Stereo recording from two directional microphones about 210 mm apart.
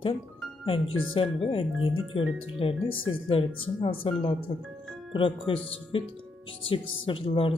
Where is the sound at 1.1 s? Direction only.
25° left (ahead or behind).